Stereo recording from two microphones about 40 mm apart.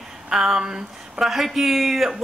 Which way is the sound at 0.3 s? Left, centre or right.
Centre.